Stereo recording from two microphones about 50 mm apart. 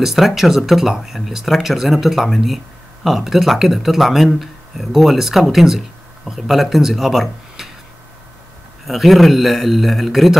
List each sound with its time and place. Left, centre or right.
0.0 s speech: centre
8.8 s speech: centre